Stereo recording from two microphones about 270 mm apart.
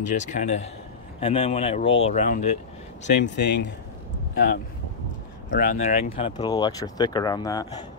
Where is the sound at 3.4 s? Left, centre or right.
Left; by 7.8 s centre.